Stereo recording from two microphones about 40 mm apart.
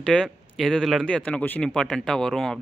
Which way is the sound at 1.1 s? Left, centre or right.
Left.